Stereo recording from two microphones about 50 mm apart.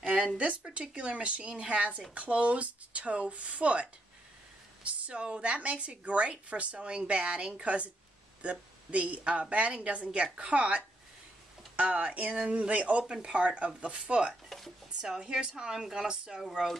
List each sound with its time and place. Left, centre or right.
0.7 s speech: right
5.0 s speech: right
14.5 s a sound: centre
15.0 s speech: centre